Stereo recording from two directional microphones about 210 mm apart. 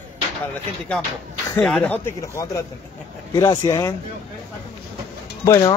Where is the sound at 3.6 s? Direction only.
15° left (ahead or behind).